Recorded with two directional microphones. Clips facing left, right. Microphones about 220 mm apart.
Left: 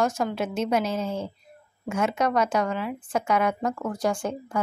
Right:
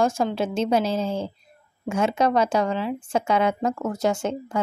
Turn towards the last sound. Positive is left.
turn(degrees=-25)  # may be behind; listen again after turning